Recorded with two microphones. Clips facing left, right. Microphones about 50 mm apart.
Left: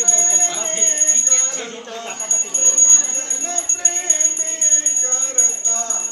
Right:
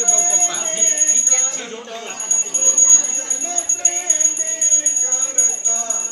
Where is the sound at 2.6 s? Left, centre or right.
Centre.